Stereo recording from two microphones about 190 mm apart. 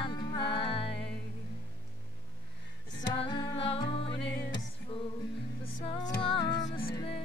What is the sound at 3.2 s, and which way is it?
Music, 25° left (ahead or behind).